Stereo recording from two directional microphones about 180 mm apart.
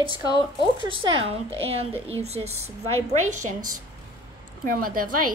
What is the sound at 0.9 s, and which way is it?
Speech, 30° right (ahead or behind).